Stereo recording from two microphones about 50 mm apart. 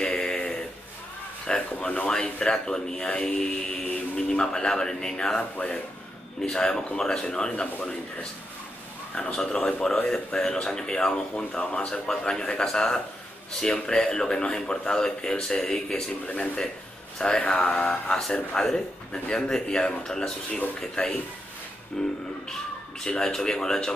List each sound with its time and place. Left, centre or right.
0.0 s a sound: centre
1.5 s speech: centre
17.2 s speech: centre
22.0 s speech: centre